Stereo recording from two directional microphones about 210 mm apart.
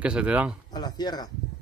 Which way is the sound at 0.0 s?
5° right (ahead or behind).